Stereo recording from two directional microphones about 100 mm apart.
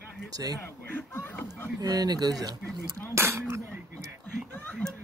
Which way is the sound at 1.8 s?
40° right (ahead or behind).